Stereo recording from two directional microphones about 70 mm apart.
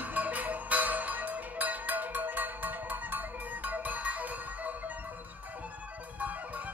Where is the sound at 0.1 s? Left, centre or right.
Right.